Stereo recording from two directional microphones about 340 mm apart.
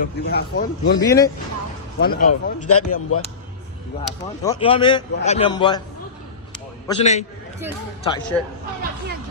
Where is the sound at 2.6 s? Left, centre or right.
Left.